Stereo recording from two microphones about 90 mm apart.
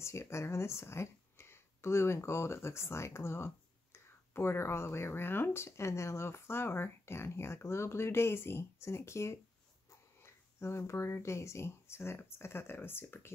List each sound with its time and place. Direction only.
0.0 s speech: 30° left (ahead or behind)